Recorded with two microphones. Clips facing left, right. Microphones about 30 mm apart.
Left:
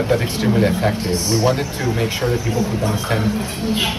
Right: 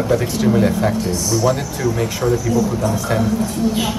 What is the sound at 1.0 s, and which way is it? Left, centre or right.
Speech, left.